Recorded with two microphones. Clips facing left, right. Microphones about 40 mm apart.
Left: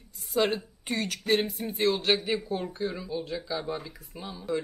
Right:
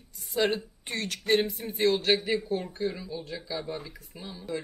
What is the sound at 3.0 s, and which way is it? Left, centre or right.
Speech, centre.